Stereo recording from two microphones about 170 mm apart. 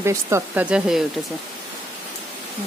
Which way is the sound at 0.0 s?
15° right (ahead or behind).